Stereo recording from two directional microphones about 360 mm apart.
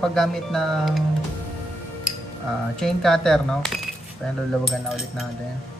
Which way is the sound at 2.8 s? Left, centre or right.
Centre.